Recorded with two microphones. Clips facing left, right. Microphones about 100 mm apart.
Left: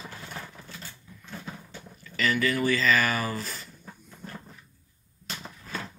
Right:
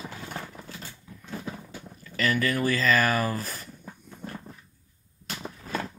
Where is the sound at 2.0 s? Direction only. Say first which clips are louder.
Even; 45° right (ahead or behind).